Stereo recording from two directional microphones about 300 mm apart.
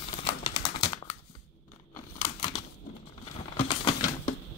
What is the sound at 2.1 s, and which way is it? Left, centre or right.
Crumpling, left.